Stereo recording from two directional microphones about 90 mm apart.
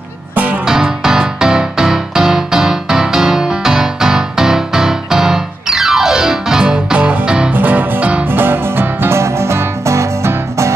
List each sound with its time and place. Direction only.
0.3 s music: 20° right (ahead or behind)
0.7 s music: 5° right (ahead or behind)
7.5 s music: 20° right (ahead or behind)